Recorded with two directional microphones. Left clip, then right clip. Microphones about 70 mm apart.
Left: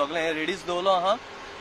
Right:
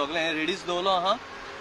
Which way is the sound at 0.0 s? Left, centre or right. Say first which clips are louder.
Left 1 dB; centre.